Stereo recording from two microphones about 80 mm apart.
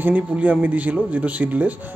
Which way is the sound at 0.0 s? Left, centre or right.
Centre.